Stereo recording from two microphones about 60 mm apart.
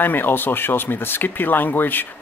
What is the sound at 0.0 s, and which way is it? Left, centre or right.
Speech, left.